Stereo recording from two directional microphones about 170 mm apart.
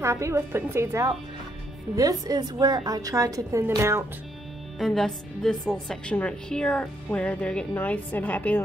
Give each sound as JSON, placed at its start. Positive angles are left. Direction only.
{"t": 0.0, "sound": "a woman's voice", "side_deg": -15}
{"t": 4.7, "sound": "a woman's voice", "side_deg": 0}